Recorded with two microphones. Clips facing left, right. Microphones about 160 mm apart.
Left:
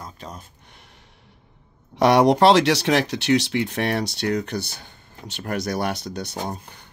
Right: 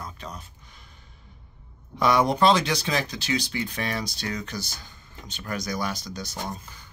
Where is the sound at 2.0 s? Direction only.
75° left (ahead or behind).